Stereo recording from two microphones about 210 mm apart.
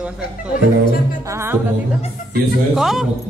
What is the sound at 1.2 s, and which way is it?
Music, 15° right (ahead or behind).